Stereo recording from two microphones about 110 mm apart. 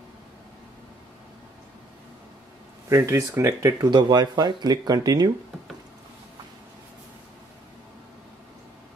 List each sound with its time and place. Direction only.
2.9 s speech: 25° right (ahead or behind)
3.9 s speech: 40° right (ahead or behind)